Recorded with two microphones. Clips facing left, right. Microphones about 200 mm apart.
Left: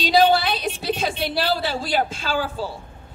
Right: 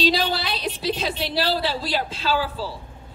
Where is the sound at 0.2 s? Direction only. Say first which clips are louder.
Left 7 dB; 50° left (ahead or behind).